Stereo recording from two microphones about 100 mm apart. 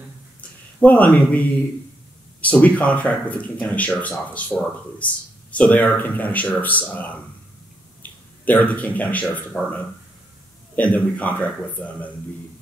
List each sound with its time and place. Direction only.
0.7 s speech: 15° left (ahead or behind)
10.8 s speech: 15° left (ahead or behind)